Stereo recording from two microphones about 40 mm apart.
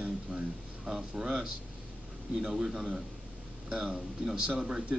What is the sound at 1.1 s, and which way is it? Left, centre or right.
Speech, centre.